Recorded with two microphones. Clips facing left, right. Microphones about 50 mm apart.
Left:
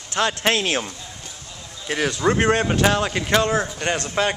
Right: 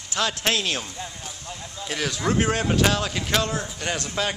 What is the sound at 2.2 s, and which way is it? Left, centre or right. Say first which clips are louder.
A man's voice: left 4 dB; centre.